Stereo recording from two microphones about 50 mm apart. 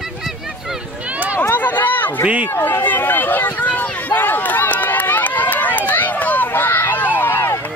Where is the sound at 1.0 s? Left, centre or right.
Right.